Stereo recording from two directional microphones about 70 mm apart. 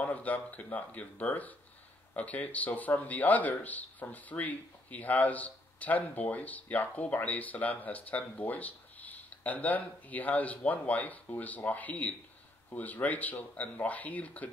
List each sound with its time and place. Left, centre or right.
0.0 s speech: left